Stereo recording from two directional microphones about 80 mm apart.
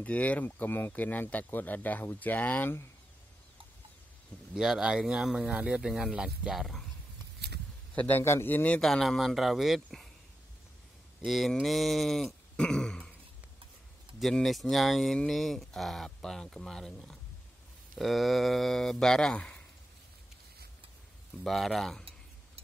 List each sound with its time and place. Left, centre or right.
0.0 s speech: centre
4.6 s speech: centre
7.9 s a man's voice: centre
8.2 s speech: left
8.8 s speech: centre
11.2 s speech: centre
14.2 s speech: centre
21.5 s speech: centre